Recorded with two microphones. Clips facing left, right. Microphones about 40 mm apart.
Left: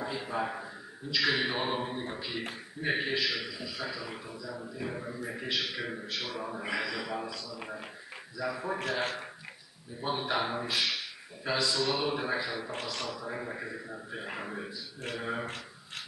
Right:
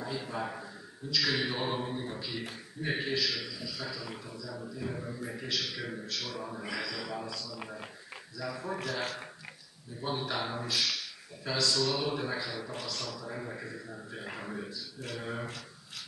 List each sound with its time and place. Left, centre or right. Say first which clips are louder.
0.0 s a man's voice: left 3 dB; left
8.7 s a man's voice: left 3 dB; left